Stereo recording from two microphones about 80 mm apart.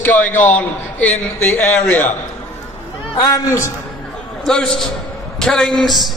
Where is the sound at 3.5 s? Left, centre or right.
Left.